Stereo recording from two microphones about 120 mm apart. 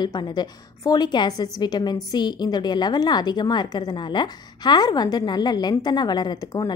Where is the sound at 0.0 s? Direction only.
35° left (ahead or behind).